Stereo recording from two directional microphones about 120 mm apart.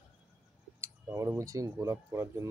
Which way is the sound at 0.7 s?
25° right (ahead or behind).